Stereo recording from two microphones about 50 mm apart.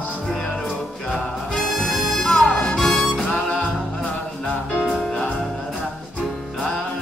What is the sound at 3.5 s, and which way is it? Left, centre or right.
Music, left.